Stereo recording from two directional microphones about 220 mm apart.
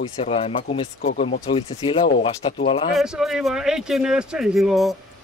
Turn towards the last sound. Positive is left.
turn(degrees=0)  # may be behind; listen again after turning